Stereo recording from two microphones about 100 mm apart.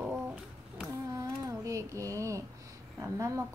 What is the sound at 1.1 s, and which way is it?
Child singing, 30° right (ahead or behind).